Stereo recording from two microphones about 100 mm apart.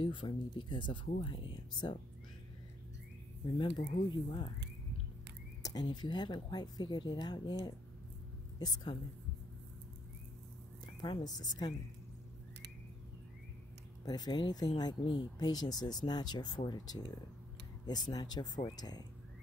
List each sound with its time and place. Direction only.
0.0 s speech: 55° left (ahead or behind)
3.5 s speech: 45° left (ahead or behind)
5.6 s speech: 40° left (ahead or behind)
8.5 s speech: 40° left (ahead or behind)
11.0 s speech: 40° left (ahead or behind)
14.0 s speech: 40° left (ahead or behind)